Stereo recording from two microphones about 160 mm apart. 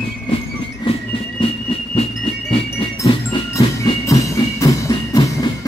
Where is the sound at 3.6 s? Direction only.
25° left (ahead or behind).